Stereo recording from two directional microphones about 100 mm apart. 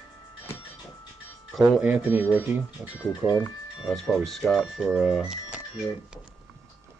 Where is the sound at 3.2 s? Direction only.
20° left (ahead or behind).